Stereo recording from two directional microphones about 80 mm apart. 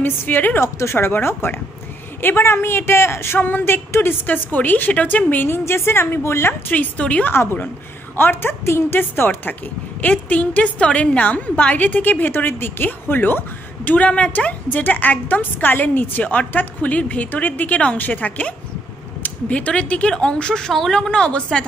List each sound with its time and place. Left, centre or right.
0.0 s a woman's voice: left
6.7 s speech: centre
8.2 s a woman's voice: left; by 21.6 s centre